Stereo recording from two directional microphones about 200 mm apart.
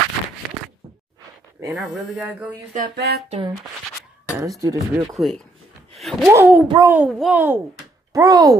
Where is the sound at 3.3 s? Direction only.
25° right (ahead or behind).